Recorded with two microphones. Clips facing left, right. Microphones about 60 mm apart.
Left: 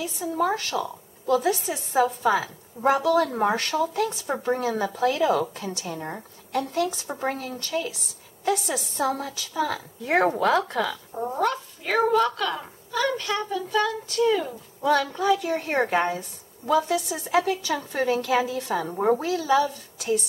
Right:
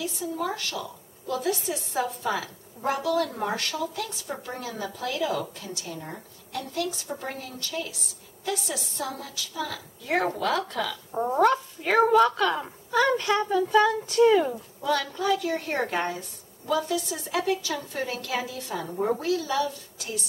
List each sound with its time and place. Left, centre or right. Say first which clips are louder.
0.0 s a woman's voice: left 5 dB; left
1.4 s a woman's voice: left 3 dB; left
11.1 s a woman's voice: right 4 dB; centre
15.0 s a woman's voice: left 3 dB; centre